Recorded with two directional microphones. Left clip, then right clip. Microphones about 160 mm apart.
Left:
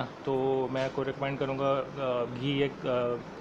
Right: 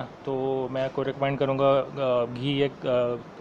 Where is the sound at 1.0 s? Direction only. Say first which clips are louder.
Right 6 dB; 20° right (ahead or behind).